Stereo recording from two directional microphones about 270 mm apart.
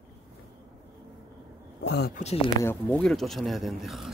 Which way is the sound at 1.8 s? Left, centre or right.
Left.